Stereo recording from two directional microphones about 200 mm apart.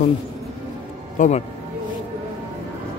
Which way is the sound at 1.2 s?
40° left (ahead or behind).